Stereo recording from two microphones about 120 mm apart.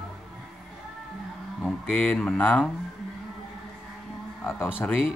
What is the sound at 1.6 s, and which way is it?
Speech, 10° left (ahead or behind).